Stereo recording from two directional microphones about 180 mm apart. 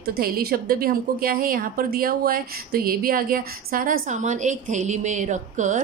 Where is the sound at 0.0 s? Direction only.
55° right (ahead or behind).